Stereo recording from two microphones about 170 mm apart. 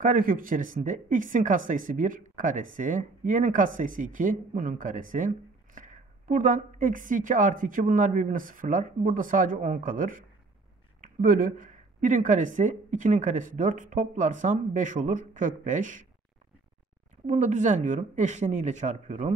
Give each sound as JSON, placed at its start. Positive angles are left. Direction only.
{"t": 0.0, "sound": "speech", "side_deg": -55}
{"t": 17.3, "sound": "speech", "side_deg": -45}